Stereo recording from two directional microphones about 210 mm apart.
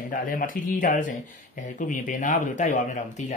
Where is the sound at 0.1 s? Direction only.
40° left (ahead or behind).